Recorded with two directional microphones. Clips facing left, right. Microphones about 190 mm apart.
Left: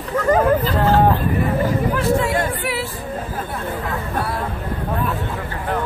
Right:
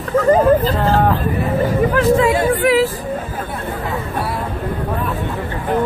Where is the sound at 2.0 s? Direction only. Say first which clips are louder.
Right 8 dB; 90° right.